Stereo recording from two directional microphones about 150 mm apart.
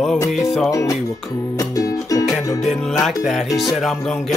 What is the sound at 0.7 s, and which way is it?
Music, 20° left (ahead or behind).